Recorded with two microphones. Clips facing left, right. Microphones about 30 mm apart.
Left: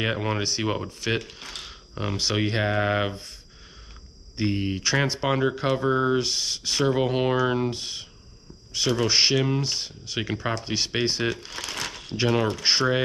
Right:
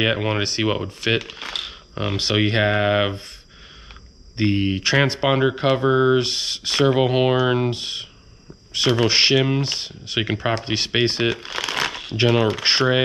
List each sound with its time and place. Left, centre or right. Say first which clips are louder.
0.0 s speech: right 5 dB; right
1.7 s speech: right 5 dB; right
4.4 s speech: right 6 dB; right
12.1 s speech: right 4 dB; right